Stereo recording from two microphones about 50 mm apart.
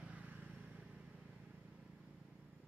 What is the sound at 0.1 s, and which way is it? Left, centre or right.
Vehicle, right.